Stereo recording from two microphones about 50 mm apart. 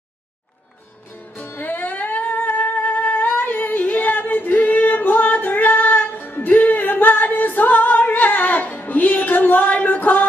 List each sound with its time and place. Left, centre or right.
1.4 s music: left